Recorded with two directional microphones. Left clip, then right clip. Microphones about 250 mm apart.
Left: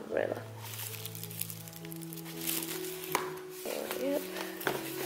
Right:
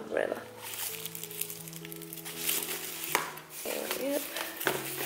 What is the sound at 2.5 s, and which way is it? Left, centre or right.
Music, centre.